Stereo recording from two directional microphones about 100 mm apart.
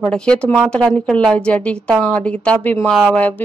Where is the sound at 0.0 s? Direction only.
10° left (ahead or behind).